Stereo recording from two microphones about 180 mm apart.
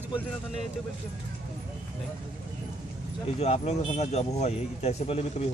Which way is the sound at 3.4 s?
35° left (ahead or behind).